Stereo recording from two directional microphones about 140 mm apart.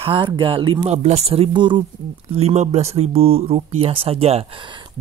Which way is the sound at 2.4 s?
50° right (ahead or behind).